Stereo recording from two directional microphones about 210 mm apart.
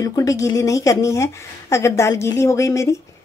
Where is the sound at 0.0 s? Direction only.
15° left (ahead or behind).